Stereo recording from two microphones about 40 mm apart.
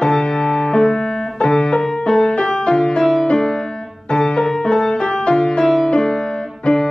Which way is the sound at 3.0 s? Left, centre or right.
Centre.